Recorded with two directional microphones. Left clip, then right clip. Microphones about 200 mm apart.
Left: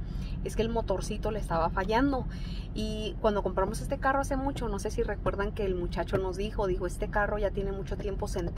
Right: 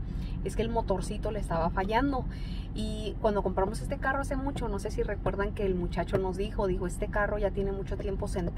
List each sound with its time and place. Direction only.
0.6 s speech: 15° left (ahead or behind)